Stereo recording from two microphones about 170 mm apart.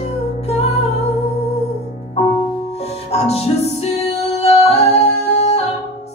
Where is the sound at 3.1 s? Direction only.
40° left (ahead or behind).